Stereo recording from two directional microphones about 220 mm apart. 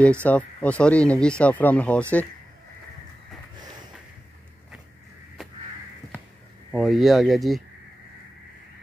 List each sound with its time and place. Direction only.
0.0 s speech: 5° left (ahead or behind)
6.7 s speech: centre (ahead or behind)